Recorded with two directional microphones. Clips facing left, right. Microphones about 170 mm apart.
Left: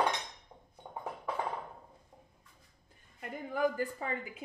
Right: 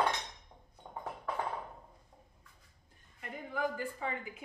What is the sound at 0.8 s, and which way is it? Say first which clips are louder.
Music: left 1 dB; 10° left (ahead or behind).